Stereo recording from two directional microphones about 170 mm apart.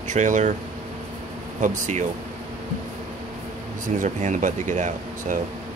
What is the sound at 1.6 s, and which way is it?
Speech, 45° right (ahead or behind).